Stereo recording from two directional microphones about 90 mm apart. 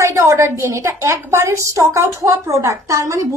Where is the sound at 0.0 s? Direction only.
35° right (ahead or behind).